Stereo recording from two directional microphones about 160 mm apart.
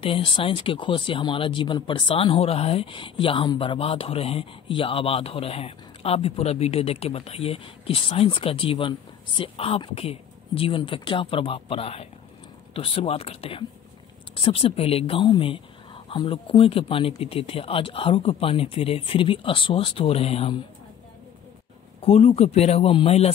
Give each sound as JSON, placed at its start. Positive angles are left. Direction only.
{"t": 0.0, "sound": "speech", "side_deg": 35}
{"t": 22.0, "sound": "speech", "side_deg": 40}